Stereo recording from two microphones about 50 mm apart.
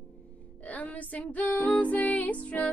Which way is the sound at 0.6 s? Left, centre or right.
Left.